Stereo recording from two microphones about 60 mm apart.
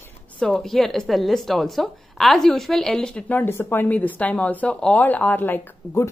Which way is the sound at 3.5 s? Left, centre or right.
Left.